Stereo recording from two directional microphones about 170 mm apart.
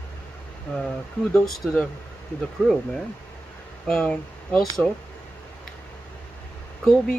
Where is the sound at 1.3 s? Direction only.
Centre (ahead or behind).